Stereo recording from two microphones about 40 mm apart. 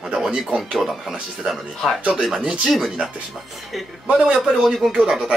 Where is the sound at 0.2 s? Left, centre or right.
Right.